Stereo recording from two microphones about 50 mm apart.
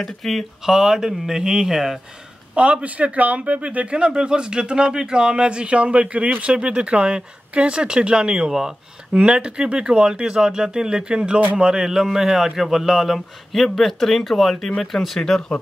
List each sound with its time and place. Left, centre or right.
0.0 s speech: centre
2.5 s a man's voice: right; by 15.6 s centre